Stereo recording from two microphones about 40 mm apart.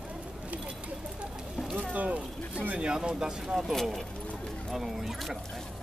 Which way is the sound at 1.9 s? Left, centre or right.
Right.